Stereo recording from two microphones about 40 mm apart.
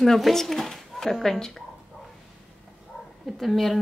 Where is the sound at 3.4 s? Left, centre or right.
Centre.